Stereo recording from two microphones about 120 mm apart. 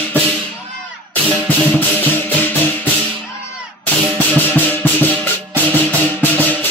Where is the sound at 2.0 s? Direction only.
15° left (ahead or behind).